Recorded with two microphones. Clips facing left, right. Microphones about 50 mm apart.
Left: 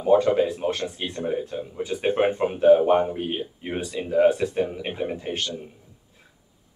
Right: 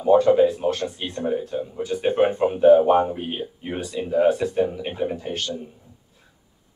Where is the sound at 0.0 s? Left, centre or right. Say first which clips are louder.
Right 2 dB; centre.